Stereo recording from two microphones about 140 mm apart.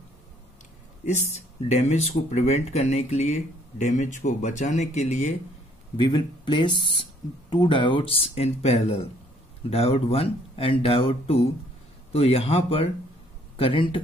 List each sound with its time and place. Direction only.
1.0 s speech: 55° left (ahead or behind)
5.9 s speech: 30° left (ahead or behind)